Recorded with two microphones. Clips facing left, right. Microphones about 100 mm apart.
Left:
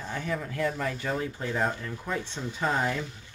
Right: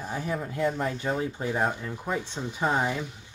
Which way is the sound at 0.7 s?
25° right (ahead or behind).